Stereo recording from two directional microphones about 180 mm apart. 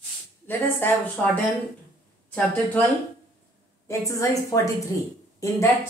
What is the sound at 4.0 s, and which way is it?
A woman's voice, 15° left (ahead or behind).